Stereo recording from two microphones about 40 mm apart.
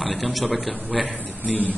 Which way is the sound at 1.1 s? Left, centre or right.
Right.